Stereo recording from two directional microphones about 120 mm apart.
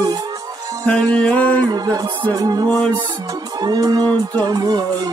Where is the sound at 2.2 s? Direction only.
35° right (ahead or behind).